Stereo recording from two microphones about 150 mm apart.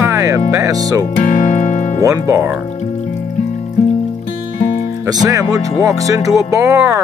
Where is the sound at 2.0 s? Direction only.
20° right (ahead or behind).